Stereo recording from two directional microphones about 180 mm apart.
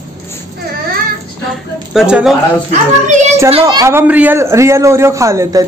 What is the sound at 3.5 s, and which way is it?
A man's voice, 30° right (ahead or behind).